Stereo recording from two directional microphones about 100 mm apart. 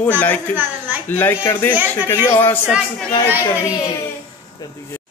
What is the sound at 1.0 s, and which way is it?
Speech, 20° left (ahead or behind).